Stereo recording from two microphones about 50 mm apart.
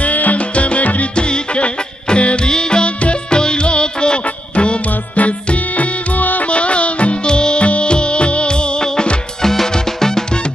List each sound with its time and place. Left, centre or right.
0.0 s music: left; by 10.2 s centre